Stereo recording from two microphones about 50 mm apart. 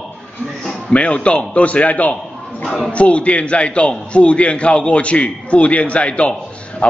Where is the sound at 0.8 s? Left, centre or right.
Left.